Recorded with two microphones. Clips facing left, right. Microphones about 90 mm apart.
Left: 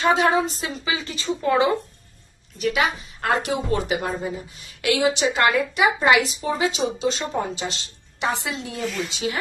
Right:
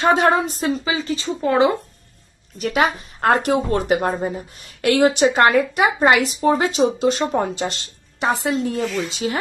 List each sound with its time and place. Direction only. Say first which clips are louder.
0.0 s speech: right 3 dB; 45° right (ahead or behind); by 1.7 s 30° right (ahead or behind)
2.6 s speech: right 3 dB; 45° right (ahead or behind)